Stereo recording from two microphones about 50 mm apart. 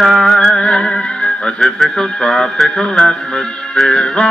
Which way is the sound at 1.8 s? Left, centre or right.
Centre.